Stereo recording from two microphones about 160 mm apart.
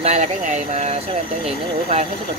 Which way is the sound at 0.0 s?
45° right (ahead or behind).